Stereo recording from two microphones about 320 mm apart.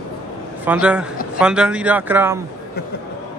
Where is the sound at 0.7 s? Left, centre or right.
Centre.